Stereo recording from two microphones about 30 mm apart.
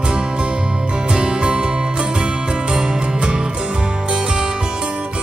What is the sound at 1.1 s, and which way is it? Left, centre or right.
Music, right.